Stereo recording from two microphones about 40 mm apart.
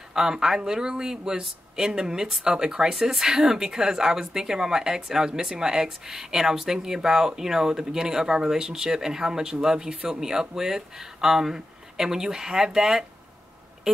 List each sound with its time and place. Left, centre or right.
0.1 s speech: centre